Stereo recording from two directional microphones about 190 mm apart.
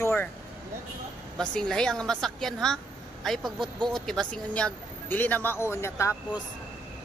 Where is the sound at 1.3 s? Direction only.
5° left (ahead or behind).